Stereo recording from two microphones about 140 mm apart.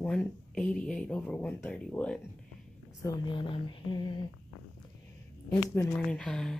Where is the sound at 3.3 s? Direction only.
35° left (ahead or behind).